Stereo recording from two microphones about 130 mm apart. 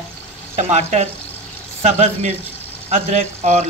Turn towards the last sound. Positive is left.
turn(degrees=-65)  # may be behind; listen again after turning